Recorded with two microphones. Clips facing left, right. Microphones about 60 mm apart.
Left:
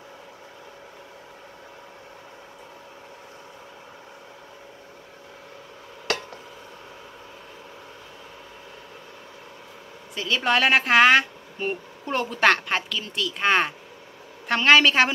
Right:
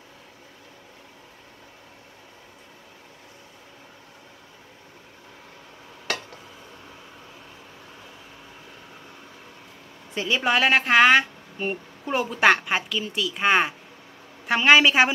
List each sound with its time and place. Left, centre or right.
10.1 s a woman's voice: centre
10.5 s a woman's voice: centre